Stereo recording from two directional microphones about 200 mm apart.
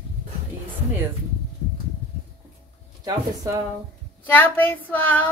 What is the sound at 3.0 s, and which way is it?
Speech, 20° right (ahead or behind).